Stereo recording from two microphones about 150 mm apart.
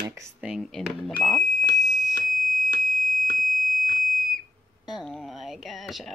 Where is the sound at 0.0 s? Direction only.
20° right (ahead or behind).